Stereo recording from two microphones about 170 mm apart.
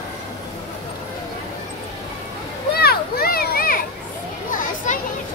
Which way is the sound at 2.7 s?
65° left (ahead or behind).